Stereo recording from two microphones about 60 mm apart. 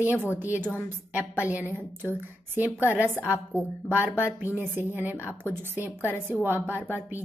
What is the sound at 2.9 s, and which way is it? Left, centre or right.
A woman's voice, right.